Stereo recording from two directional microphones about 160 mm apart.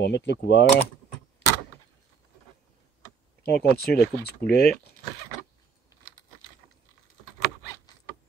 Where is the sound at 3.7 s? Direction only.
80° left.